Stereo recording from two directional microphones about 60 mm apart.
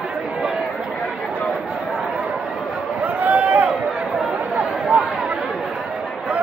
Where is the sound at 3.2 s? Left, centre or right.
Right.